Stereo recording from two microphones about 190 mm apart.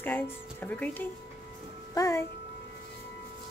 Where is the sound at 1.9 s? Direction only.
15° left (ahead or behind).